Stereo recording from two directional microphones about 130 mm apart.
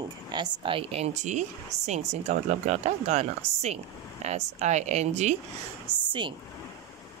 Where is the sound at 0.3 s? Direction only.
40° right (ahead or behind); by 5.4 s 60° right (ahead or behind).